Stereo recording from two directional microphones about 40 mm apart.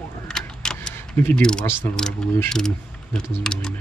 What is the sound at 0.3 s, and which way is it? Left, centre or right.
Vehicle, centre.